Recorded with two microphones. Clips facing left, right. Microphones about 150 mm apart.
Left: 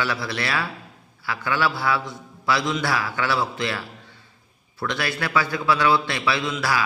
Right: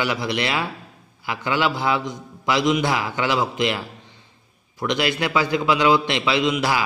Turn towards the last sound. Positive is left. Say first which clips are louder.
# right 4 dB
turn(degrees=-20)  # may be behind; listen again after turning